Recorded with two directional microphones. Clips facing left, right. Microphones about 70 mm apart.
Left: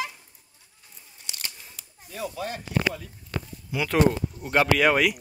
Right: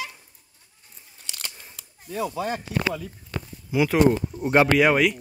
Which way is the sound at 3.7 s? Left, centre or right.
Centre.